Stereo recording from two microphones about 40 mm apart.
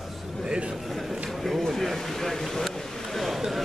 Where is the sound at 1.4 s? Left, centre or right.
Centre.